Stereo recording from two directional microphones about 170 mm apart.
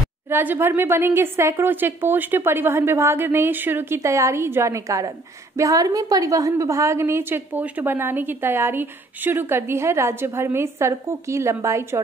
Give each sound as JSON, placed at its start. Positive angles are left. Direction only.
{"t": 0.3, "sound": "a woman's voice", "side_deg": -10}